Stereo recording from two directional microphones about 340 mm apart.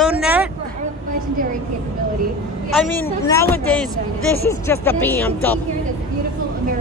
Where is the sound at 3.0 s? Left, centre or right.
Centre.